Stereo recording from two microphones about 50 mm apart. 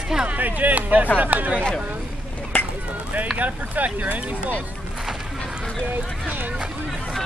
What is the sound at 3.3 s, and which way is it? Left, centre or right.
Speech, right.